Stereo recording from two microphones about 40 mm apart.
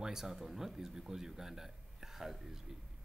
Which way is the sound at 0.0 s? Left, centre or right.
Centre.